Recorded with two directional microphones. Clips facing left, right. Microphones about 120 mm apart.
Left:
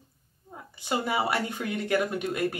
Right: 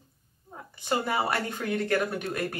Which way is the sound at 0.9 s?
15° left (ahead or behind).